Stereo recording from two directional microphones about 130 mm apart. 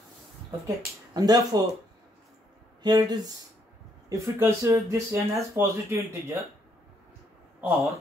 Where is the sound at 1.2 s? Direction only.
30° right (ahead or behind).